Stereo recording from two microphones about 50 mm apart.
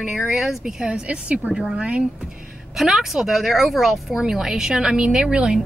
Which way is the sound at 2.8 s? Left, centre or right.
Centre.